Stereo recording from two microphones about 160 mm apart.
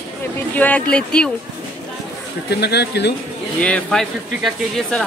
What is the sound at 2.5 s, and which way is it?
Speech, 90° left.